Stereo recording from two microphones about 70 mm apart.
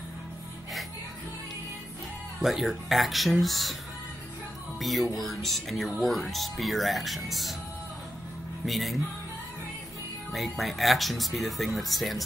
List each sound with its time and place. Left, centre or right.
2.4 s speech: centre
4.7 s speech: centre
8.6 s speech: centre
10.3 s speech: centre